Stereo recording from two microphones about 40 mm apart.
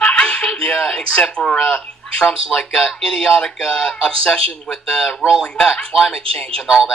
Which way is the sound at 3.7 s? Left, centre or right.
Left.